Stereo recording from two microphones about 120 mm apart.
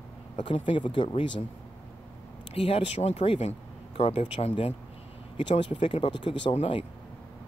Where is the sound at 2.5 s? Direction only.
55° left (ahead or behind).